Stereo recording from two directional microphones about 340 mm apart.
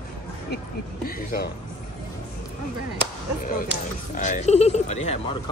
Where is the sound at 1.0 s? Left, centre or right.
Left.